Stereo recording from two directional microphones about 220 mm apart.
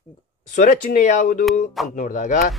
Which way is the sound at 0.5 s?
35° left (ahead or behind).